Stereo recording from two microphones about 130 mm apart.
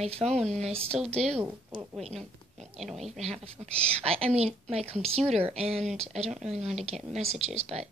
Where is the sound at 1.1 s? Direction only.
Centre (ahead or behind).